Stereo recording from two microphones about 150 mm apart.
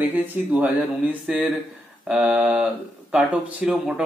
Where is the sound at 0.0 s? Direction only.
10° right (ahead or behind).